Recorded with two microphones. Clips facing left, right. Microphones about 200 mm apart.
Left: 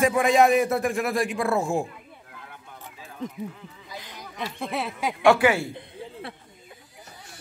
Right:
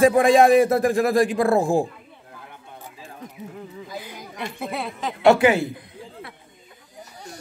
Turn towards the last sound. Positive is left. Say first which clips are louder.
# left 2 dB
turn(degrees=30)  # may be behind; listen again after turning